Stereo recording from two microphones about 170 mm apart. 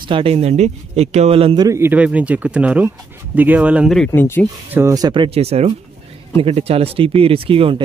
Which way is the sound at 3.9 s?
10° left (ahead or behind).